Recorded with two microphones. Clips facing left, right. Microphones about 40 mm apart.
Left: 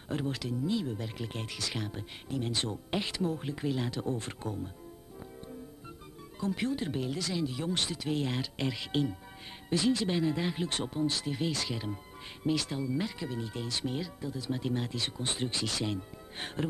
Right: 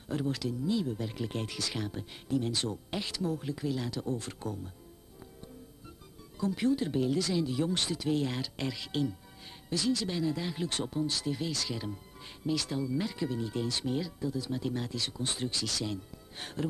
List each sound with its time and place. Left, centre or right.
0.1 s speech: left
6.4 s speech: left